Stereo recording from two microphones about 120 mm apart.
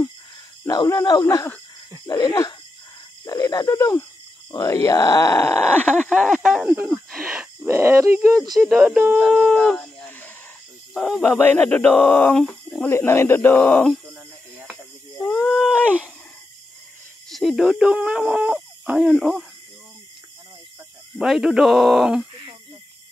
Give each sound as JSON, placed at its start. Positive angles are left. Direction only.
{"t": 0.7, "sound": "speech", "side_deg": 30}
{"t": 7.1, "sound": "a sound", "side_deg": -5}
{"t": 7.6, "sound": "speech", "side_deg": -20}
{"t": 8.5, "sound": "speech", "side_deg": 0}
{"t": 10.9, "sound": "speech", "side_deg": 0}
{"t": 11.4, "sound": "speech", "side_deg": 15}
{"t": 12.4, "sound": "speech", "side_deg": 5}
{"t": 12.8, "sound": "speech", "side_deg": 20}
{"t": 15.3, "sound": "a sound", "side_deg": 0}
{"t": 17.3, "sound": "speech", "side_deg": 0}
{"t": 21.2, "sound": "speech", "side_deg": -5}